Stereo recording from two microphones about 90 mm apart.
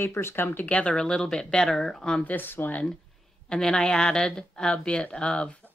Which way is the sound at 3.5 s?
10° left (ahead or behind).